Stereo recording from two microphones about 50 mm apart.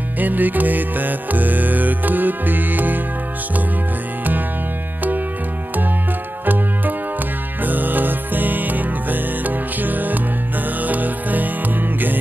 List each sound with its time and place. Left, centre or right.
0.2 s music: right
6.4 s music: right